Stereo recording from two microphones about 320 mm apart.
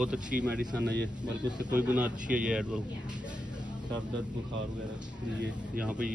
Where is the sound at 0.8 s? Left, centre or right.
Right.